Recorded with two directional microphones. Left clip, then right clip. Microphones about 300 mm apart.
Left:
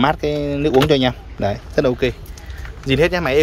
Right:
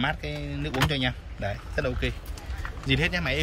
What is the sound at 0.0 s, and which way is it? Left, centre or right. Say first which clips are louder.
Speech: left 12 dB; centre.